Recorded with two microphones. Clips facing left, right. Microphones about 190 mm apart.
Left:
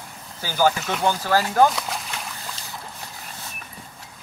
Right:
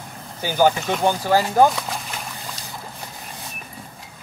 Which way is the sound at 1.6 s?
Centre (ahead or behind).